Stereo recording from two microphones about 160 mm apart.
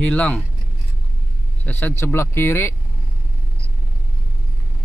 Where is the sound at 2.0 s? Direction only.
15° left (ahead or behind).